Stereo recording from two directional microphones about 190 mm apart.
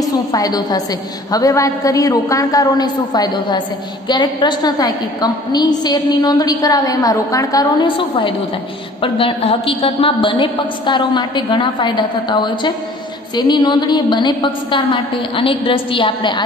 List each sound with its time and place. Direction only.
0.0 s a woman's voice: 20° left (ahead or behind)